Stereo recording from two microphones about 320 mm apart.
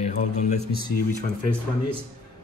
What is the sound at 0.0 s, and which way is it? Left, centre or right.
Speech, left.